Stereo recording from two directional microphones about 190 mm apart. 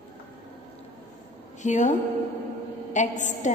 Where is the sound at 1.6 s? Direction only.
40° left (ahead or behind).